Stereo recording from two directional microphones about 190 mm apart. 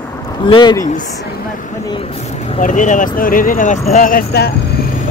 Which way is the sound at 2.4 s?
40° left (ahead or behind).